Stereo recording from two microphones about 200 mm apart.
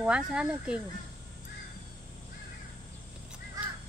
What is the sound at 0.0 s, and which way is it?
Speech, 5° right (ahead or behind).